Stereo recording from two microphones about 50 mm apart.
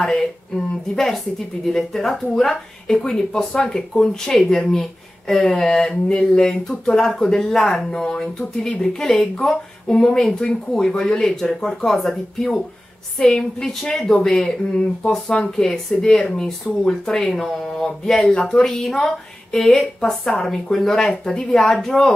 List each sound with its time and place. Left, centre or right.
0.0 s speech: centre